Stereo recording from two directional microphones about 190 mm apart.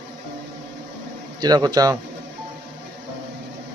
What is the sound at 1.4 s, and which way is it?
Speech, 20° right (ahead or behind).